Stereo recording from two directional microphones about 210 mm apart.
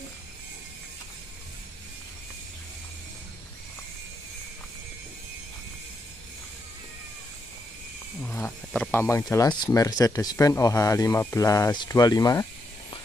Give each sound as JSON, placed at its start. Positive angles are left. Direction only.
{"t": 8.2, "sound": "speech", "side_deg": 10}